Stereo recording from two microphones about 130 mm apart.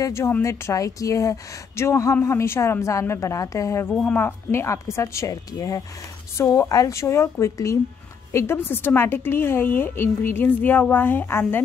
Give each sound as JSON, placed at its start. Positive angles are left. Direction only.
{"t": 0.0, "sound": "a woman's voice", "side_deg": 20}
{"t": 3.9, "sound": "a woman's voice", "side_deg": 10}